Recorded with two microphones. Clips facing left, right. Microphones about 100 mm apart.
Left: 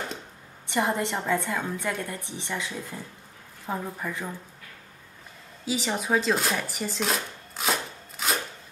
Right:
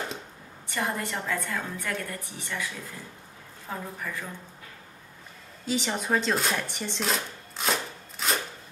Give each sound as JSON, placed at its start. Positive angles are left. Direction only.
{"t": 0.7, "sound": "a woman's voice", "side_deg": 20}
{"t": 5.7, "sound": "speech", "side_deg": 5}